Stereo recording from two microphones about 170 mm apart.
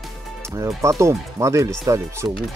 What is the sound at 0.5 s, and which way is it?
Speech, 20° right (ahead or behind).